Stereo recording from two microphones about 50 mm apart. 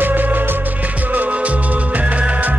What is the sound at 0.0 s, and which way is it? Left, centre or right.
Music, right.